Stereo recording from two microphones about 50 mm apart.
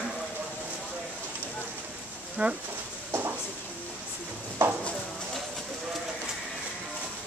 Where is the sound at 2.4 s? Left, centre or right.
Right.